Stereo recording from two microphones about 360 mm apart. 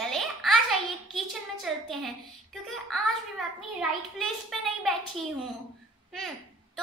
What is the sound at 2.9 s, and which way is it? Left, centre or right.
Speech, centre.